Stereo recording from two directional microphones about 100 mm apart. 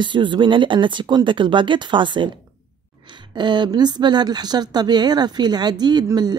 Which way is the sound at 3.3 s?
50° right (ahead or behind).